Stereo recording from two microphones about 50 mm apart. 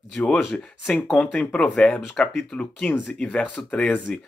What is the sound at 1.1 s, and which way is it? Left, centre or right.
Speech, left.